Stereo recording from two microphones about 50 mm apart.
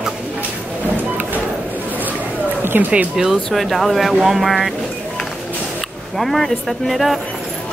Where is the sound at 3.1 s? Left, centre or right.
Centre.